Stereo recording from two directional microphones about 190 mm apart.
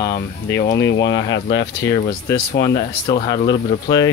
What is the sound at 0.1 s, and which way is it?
Speech, 60° left (ahead or behind).